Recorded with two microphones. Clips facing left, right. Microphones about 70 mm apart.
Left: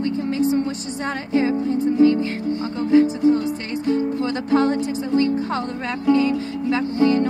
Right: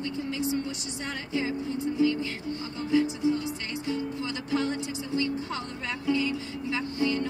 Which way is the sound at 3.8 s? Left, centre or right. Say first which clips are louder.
Left 11 dB; left.